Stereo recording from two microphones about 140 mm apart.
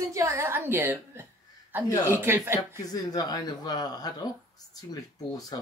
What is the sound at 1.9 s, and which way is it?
Speech, 25° left (ahead or behind).